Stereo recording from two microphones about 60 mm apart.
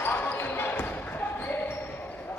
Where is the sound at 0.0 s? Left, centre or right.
Left.